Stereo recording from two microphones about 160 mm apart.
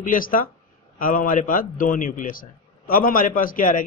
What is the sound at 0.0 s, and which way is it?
A man's voice, 60° left (ahead or behind).